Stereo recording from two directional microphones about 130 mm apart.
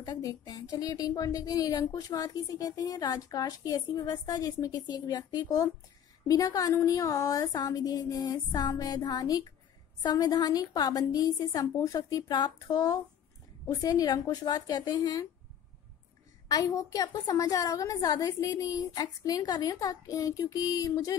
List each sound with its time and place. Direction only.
0.0 s speech: 30° left (ahead or behind)
16.4 s speech: 30° left (ahead or behind)